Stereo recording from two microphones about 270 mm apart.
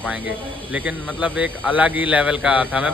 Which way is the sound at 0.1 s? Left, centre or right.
Centre.